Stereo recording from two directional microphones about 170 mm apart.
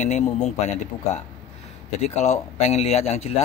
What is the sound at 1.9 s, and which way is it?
Speech, 40° left (ahead or behind).